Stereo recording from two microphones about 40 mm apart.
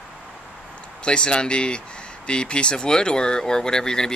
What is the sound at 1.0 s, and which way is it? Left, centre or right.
Speech, left.